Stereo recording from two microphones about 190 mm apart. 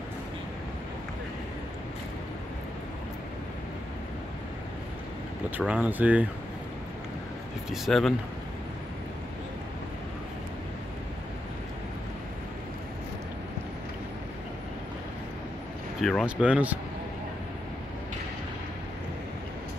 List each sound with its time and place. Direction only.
5.6 s speech: 5° right (ahead or behind)
7.7 s speech: centre (ahead or behind)
16.0 s speech: centre (ahead or behind)